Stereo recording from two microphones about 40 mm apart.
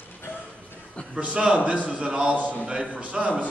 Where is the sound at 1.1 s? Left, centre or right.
Right.